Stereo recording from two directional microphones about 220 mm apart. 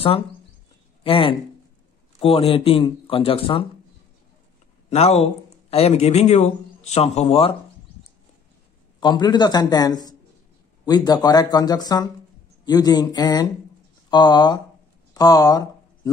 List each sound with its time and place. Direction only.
1.0 s speech: 25° left (ahead or behind)
4.8 s speech: 30° left (ahead or behind)
9.0 s speech: 20° left (ahead or behind)
15.1 s a sound: 15° left (ahead or behind)